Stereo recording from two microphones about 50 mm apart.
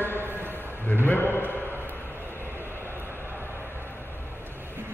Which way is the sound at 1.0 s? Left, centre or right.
Left.